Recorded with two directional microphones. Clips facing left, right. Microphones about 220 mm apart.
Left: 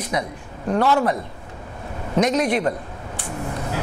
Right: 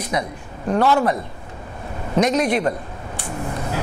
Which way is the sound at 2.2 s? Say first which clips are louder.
Right 1 dB; 15° right (ahead or behind).